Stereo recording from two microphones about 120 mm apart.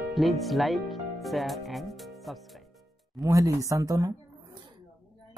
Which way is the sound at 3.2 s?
25° right (ahead or behind).